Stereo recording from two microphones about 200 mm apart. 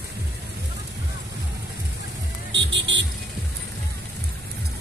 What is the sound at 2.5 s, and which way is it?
Music, 65° right (ahead or behind).